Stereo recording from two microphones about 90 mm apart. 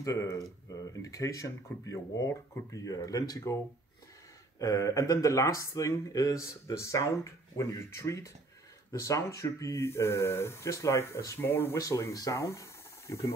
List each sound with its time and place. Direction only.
0.0 s speech: 35° left (ahead or behind)
11.8 s speech: 40° left (ahead or behind)